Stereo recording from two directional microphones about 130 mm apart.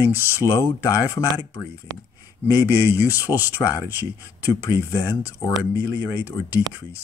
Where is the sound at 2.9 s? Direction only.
15° right (ahead or behind).